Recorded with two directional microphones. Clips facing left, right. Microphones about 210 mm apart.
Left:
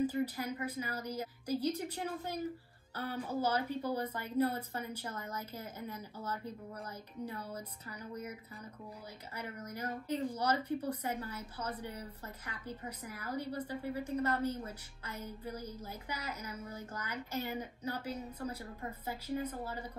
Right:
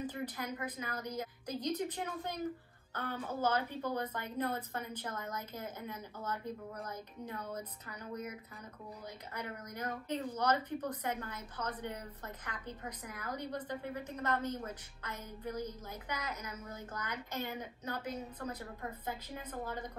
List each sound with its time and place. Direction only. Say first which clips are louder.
0.0 s a woman's voice: left 6 dB; 10° left (ahead or behind)
9.3 s a woman's voice: left 1 dB; 10° left (ahead or behind)
14.3 s a woman's voice: left 1 dB; 35° left (ahead or behind)
14.7 s a woman's voice: right 1 dB; 10° left (ahead or behind)